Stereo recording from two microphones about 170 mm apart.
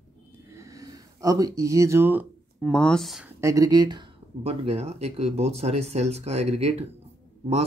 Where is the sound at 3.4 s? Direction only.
20° right (ahead or behind); by 6.9 s 35° right (ahead or behind).